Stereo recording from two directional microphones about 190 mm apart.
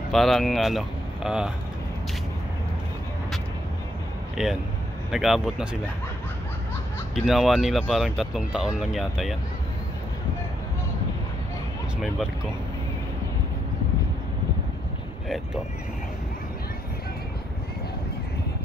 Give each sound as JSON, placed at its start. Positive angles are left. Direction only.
{"t": 0.1, "sound": "speech", "side_deg": 0}
{"t": 4.4, "sound": "speech", "side_deg": -5}
{"t": 7.2, "sound": "speech", "side_deg": 0}